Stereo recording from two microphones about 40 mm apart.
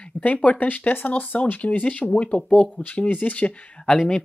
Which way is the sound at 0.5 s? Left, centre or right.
Left.